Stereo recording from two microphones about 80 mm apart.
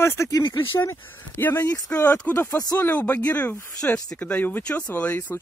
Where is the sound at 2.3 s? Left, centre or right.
Centre.